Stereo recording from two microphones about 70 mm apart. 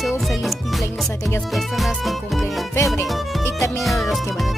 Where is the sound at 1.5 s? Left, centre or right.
Centre.